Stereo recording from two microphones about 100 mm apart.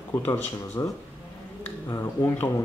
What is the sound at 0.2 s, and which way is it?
Speech, 25° left (ahead or behind).